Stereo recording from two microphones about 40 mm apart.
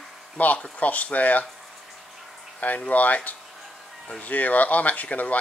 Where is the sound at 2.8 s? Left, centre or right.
Left.